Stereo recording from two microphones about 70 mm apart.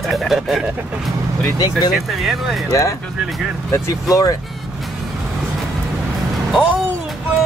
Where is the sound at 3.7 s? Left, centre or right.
Left.